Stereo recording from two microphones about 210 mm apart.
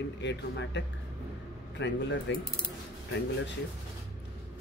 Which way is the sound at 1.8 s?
60° left (ahead or behind).